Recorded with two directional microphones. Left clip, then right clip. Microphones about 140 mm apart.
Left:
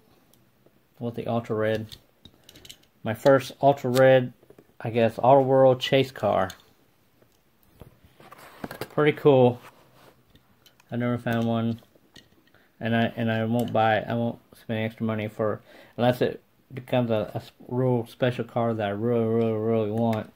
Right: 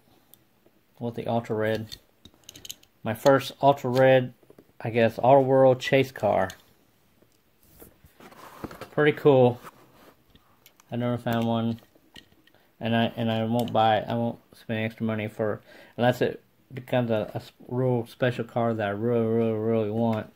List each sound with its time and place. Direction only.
0.9 s speech: centre (ahead or behind)
2.2 s mechanisms: 15° right (ahead or behind)
3.0 s speech: centre (ahead or behind)
4.7 s speech: 10° right (ahead or behind)
8.9 s speech: centre (ahead or behind)
10.9 s speech: centre (ahead or behind)